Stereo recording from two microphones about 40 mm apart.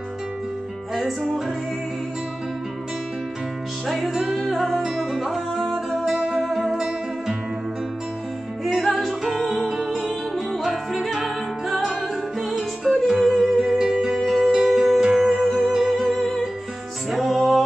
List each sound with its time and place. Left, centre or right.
0.9 s music: centre
3.8 s music: centre
6.1 s music: right
6.4 s music: centre
8.6 s music: centre
13.6 s music: centre
14.1 s music: centre